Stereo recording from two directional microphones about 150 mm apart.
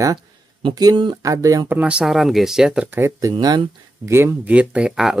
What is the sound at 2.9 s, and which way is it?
Speech, 20° right (ahead or behind).